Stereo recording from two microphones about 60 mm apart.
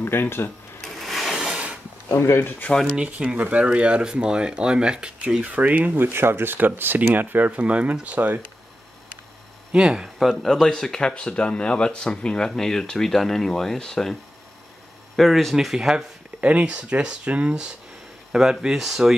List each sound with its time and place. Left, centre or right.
0.0 s speech: left
0.8 s wood: centre
1.3 s a sound: centre
2.0 s speech: left
2.7 s speech: left
3.2 s speech: centre
9.8 s speech: centre
10.1 s speech: centre
15.1 s speech: centre
16.3 s speech: right; by 19.1 s centre